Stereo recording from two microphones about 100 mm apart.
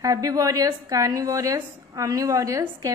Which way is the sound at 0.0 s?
35° right (ahead or behind).